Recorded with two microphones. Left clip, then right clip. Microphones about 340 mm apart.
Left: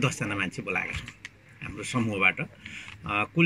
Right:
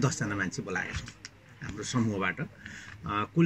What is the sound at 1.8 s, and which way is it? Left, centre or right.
Speech, centre.